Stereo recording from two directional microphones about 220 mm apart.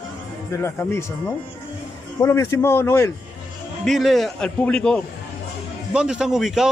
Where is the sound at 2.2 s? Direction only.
15° left (ahead or behind).